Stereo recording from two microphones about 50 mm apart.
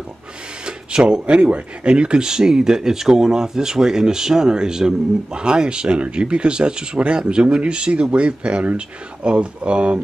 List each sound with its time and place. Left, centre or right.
0.7 s speech: centre